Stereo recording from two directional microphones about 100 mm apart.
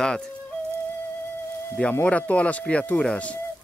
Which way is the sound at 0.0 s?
10° left (ahead or behind).